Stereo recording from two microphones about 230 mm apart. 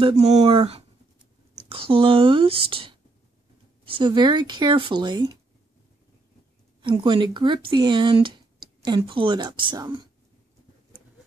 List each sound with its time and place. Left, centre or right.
0.0 s speech: right
6.8 s speech: right